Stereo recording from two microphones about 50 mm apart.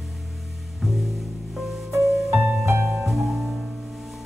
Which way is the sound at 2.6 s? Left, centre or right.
Right.